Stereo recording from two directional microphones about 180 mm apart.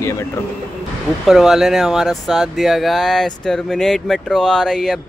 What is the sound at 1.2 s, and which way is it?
Speech, centre (ahead or behind).